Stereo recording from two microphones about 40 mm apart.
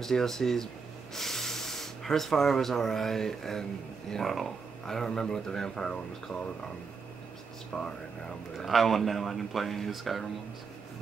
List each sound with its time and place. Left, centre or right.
0.0 s speech: centre
7.7 s speech: left
8.5 s speech: centre